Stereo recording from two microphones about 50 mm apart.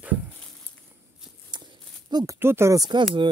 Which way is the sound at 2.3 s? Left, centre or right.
Right.